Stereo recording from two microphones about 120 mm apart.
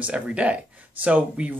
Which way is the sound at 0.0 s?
10° right (ahead or behind).